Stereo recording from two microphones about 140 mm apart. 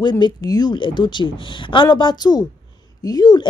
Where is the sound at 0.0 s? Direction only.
30° left (ahead or behind).